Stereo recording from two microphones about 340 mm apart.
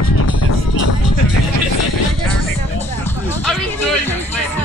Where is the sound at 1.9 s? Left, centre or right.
Left.